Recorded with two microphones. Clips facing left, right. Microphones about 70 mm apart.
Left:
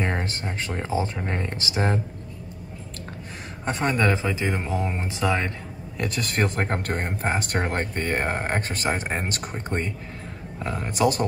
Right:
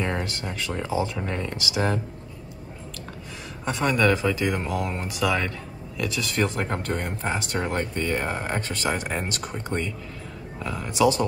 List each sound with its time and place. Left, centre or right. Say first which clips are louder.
0.0 s speech: even; left
3.6 s speech: right 1 dB; left
5.9 s speech: even; left